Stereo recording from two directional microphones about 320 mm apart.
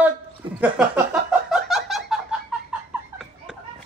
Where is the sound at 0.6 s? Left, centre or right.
Centre.